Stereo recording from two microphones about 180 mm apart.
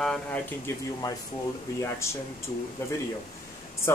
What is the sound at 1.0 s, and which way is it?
Speech, 20° left (ahead or behind).